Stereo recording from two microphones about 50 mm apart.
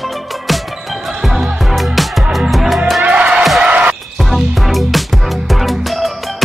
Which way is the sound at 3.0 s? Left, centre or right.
Right.